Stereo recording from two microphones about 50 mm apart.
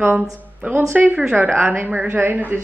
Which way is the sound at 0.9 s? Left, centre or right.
Right.